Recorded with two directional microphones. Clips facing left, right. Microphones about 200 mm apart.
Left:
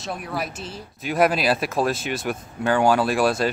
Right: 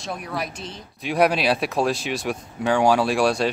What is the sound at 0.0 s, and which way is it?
Speech, 5° left (ahead or behind).